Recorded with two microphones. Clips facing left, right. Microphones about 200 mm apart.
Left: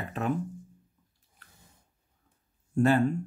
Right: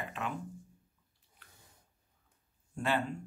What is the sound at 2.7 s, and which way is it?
Speech, 45° left (ahead or behind).